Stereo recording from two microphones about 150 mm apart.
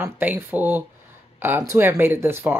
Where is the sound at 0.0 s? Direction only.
15° right (ahead or behind).